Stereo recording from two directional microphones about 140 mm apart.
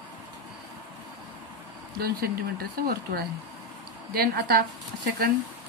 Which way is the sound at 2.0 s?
90° right.